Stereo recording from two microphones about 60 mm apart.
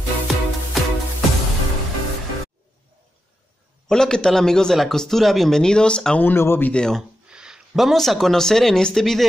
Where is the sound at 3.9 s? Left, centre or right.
Centre.